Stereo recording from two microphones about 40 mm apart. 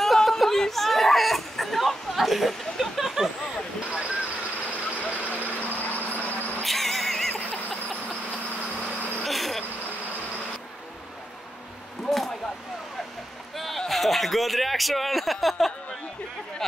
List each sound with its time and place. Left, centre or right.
0.0 s chatter: centre
4.9 s vehicle: left
6.6 s neigh: centre
7.9 s vehicle: left
9.2 s vehicle: centre
13.6 s a sound: centre